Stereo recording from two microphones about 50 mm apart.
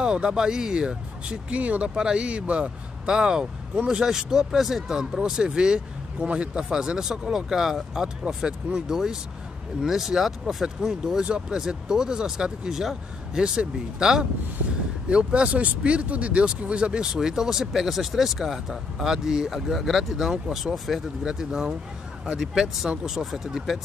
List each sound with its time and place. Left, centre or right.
0.0 s speech: centre
20.7 s speech: centre
21.2 s speech: centre